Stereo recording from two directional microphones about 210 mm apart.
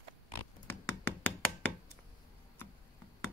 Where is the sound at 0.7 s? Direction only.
10° left (ahead or behind).